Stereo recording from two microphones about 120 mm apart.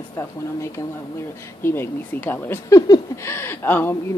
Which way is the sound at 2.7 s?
30° left (ahead or behind).